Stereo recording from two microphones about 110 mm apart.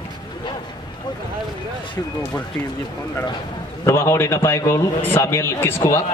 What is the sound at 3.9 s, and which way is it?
A man's voice, 25° left (ahead or behind).